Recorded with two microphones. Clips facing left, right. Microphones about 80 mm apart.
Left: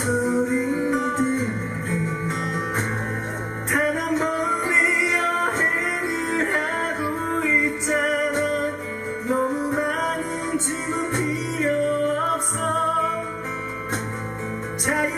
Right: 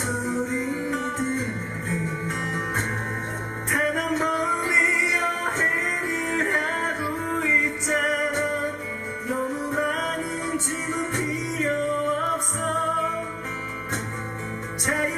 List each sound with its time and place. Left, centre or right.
0.0 s music: centre
0.7 s music: centre
0.9 s music: centre
3.7 s music: centre
9.3 s music: left
9.6 s music: centre